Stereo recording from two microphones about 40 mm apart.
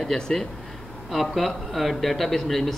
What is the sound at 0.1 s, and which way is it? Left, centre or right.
Speech, centre.